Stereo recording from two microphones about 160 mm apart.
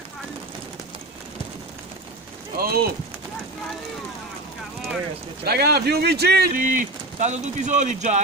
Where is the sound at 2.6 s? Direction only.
70° right (ahead or behind).